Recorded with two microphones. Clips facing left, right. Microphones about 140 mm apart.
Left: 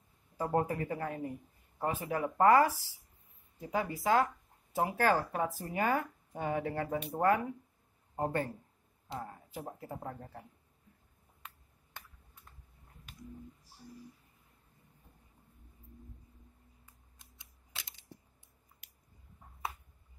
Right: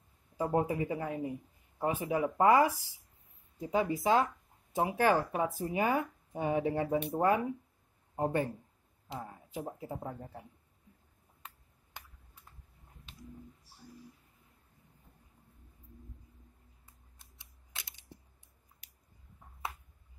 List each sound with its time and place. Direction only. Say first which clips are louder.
0.4 s a woman's voice: right 1 dB; 10° right (ahead or behind)
9.8 s speech: right 2 dB; 15° right (ahead or behind)